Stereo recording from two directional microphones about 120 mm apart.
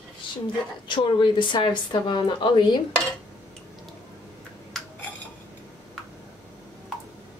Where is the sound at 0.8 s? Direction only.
40° left (ahead or behind).